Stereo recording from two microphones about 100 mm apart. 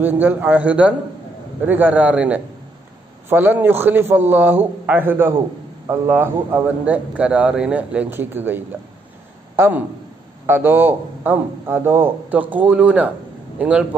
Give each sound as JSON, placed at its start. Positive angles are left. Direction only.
{"t": 0.0, "sound": "a man's voice", "side_deg": -20}
{"t": 6.8, "sound": "a man's voice", "side_deg": -15}